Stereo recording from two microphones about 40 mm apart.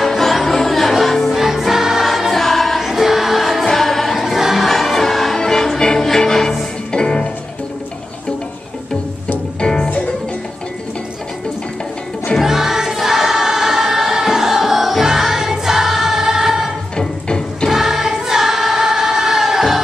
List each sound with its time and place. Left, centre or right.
0.0 s music: centre
4.6 s music: centre; by 7.2 s left
9.6 s music: centre
12.4 s choir: centre
17.6 s choir: centre